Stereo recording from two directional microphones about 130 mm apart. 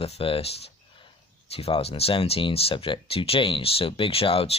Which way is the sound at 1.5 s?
50° left (ahead or behind).